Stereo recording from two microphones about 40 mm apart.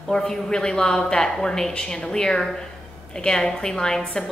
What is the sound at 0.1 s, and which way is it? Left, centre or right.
A woman's voice, centre.